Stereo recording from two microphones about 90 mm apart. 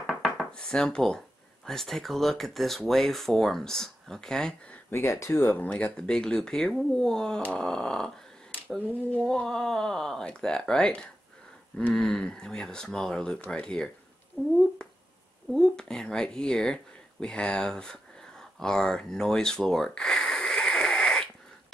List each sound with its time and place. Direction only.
0.0 s dishes: 5° left (ahead or behind)
1.7 s speech: 5° left (ahead or behind)
4.9 s speech: 30° left (ahead or behind)
5.4 s speech: 20° left (ahead or behind)
8.6 s speech: 20° left (ahead or behind)
9.3 s speech: 10° left (ahead or behind)
18.6 s a sound: 10° left (ahead or behind)